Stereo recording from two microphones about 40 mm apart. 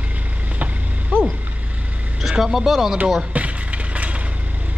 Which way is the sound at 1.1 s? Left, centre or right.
Right.